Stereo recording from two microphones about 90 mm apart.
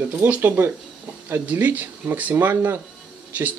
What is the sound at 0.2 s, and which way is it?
Speech, 20° right (ahead or behind).